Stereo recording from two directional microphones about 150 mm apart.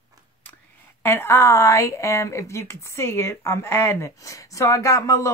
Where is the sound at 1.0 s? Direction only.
15° left (ahead or behind).